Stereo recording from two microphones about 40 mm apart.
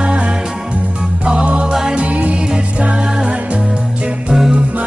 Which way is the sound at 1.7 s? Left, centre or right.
Centre.